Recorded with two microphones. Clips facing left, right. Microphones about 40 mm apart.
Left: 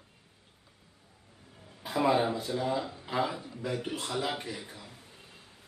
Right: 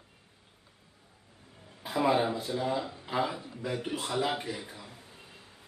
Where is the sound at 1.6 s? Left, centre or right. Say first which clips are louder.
Even; centre.